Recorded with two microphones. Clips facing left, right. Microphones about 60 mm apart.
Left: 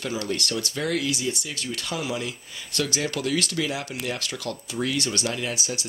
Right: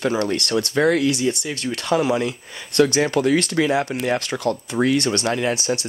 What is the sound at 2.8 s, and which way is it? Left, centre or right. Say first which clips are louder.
Speech: right 10 dB; right.